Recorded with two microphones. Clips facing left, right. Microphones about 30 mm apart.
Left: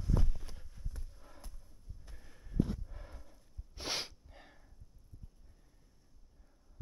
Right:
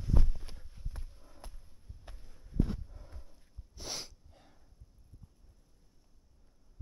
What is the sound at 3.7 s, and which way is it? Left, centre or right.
Sneeze, left.